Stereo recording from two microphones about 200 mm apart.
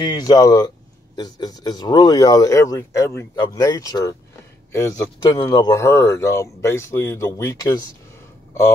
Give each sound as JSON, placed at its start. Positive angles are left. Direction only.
{"t": 0.0, "sound": "speech", "side_deg": 20}